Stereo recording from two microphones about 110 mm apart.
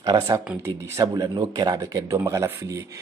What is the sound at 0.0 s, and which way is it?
Speech, 40° right (ahead or behind).